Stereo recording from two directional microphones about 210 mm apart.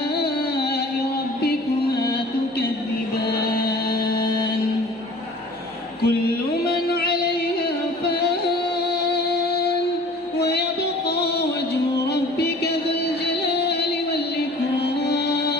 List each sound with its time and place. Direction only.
0.1 s music: 50° left (ahead or behind)
6.0 s music: 50° left (ahead or behind)